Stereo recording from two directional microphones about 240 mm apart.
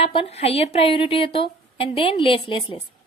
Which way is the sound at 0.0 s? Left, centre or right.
Left.